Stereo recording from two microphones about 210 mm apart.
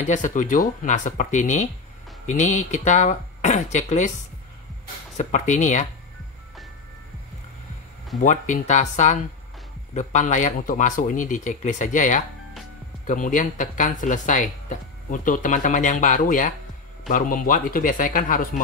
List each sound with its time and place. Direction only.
0.0 s speech: 35° left (ahead or behind)
5.1 s speech: 35° left (ahead or behind)
8.2 s speech: 35° left (ahead or behind)